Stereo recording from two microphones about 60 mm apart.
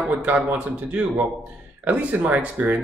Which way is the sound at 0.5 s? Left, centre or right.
Right.